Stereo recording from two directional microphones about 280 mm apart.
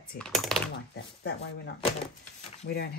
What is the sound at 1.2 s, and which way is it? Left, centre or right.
Speech, left.